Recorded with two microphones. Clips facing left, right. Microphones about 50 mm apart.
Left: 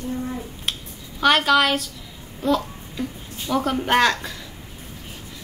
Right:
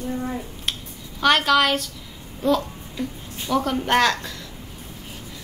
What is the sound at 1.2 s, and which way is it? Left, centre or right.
A woman's voice, centre.